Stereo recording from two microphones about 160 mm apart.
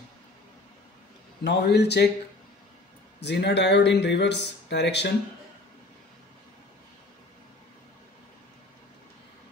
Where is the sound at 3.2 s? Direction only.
90° left.